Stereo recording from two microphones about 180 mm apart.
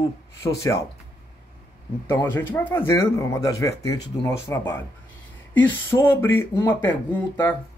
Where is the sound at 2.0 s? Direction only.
15° left (ahead or behind).